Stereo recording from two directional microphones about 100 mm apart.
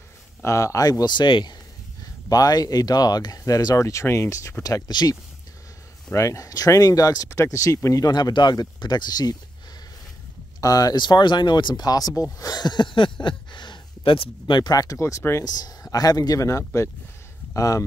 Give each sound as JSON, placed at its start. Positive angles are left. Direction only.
{"t": 0.4, "sound": "speech", "side_deg": 30}
{"t": 2.2, "sound": "speech", "side_deg": 40}
{"t": 6.1, "sound": "speech", "side_deg": 30}
{"t": 10.6, "sound": "speech", "side_deg": 35}
{"t": 14.6, "sound": "speech", "side_deg": 40}